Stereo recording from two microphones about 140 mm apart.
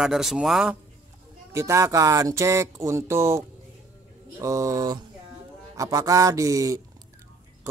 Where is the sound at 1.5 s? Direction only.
20° right (ahead or behind).